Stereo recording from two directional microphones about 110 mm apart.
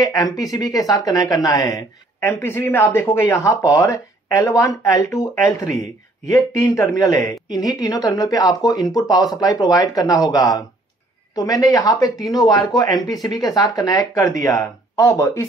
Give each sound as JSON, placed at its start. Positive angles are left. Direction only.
{"t": 0.0, "sound": "speech", "side_deg": 35}
{"t": 2.1, "sound": "speech", "side_deg": 20}